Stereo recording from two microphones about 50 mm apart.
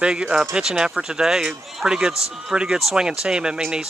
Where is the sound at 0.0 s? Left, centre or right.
Centre.